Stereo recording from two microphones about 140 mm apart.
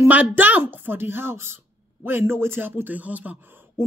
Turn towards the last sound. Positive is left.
turn(degrees=-15)  # may be behind; listen again after turning